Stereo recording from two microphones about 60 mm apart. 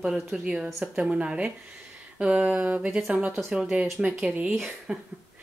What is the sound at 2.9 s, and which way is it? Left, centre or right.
Speech, centre.